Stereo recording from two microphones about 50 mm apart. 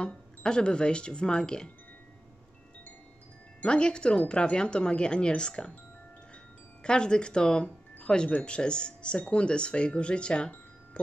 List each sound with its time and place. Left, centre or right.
0.0 s speech: centre
3.6 s speech: centre
6.8 s speech: centre